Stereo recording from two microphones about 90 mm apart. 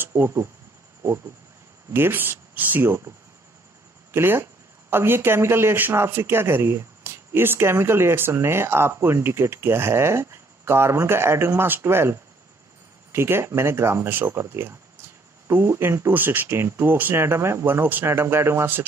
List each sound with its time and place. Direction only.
0.0 s speech: 25° right (ahead or behind)
1.9 s speech: 25° right (ahead or behind)
4.1 s speech: 25° right (ahead or behind)